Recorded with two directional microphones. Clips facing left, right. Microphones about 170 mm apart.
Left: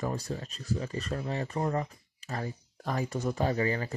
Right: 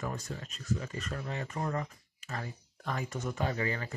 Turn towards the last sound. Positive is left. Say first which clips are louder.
# left 5 dB
turn(degrees=30)  # may be behind; listen again after turning